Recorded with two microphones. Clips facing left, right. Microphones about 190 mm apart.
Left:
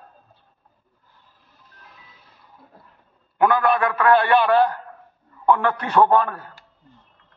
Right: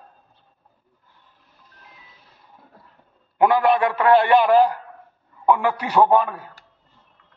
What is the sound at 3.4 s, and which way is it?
A man's voice, 25° right (ahead or behind).